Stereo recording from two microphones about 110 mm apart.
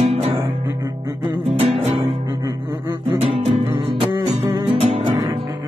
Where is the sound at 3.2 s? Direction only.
60° right (ahead or behind).